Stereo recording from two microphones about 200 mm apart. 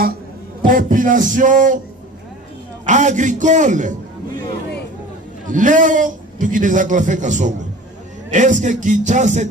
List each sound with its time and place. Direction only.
0.6 s a man's voice: 45° right (ahead or behind)
2.8 s a man's voice: 35° right (ahead or behind)
5.5 s a man's voice: 40° right (ahead or behind)